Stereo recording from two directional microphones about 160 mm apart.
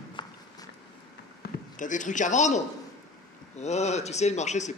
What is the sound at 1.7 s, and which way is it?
A man's voice, 50° left (ahead or behind).